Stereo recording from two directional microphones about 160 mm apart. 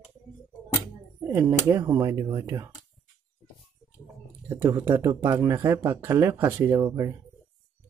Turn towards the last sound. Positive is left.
turn(degrees=-20)  # may be behind; listen again after turning